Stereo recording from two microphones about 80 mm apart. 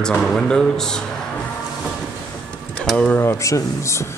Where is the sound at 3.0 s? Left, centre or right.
Left.